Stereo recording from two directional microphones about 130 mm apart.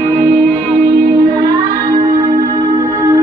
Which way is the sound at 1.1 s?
25° right (ahead or behind).